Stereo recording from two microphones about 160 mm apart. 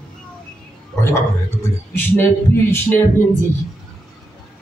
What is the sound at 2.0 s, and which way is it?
Speech, 15° left (ahead or behind).